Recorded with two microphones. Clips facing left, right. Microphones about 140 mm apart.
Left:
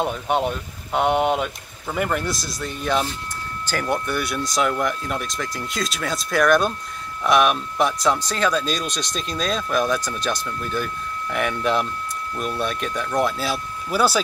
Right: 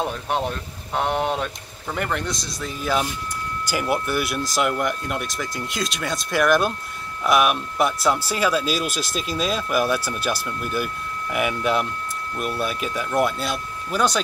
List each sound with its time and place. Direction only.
0.0 s speech: 5° left (ahead or behind)